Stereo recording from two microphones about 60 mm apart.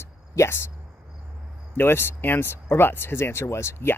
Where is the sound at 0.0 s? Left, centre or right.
Left.